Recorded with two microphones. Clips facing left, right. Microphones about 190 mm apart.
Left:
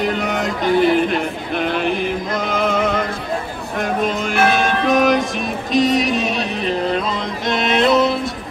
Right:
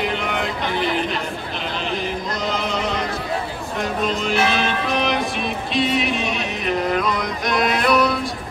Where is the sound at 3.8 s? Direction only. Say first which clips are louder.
Left 3 dB; 50° left (ahead or behind); by 8.1 s 25° left (ahead or behind).